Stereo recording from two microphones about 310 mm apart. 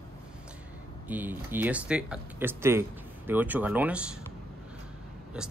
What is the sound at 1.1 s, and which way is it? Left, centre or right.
Speech, centre.